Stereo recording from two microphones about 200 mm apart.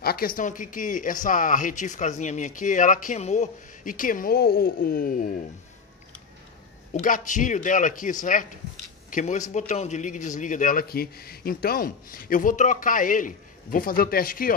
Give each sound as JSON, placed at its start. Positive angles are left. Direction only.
{"t": 0.0, "sound": "speech", "side_deg": 50}
{"t": 6.9, "sound": "speech", "side_deg": 40}